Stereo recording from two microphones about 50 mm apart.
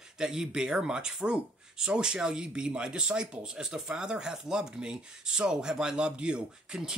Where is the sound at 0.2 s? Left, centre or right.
Centre.